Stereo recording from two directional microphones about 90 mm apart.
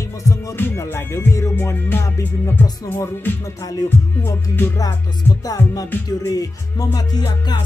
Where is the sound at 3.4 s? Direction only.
40° left (ahead or behind).